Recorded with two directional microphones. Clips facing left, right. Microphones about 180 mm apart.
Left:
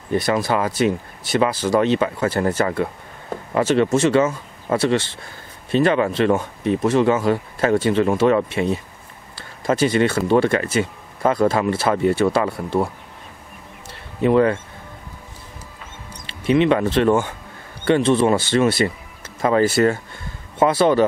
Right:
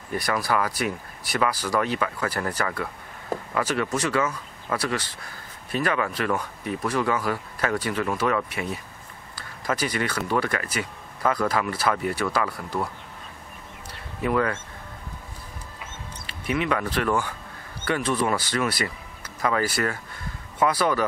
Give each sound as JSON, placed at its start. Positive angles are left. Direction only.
{"t": 0.1, "sound": "speech", "side_deg": 25}
{"t": 14.2, "sound": "speech", "side_deg": 25}
{"t": 16.3, "sound": "speech", "side_deg": 25}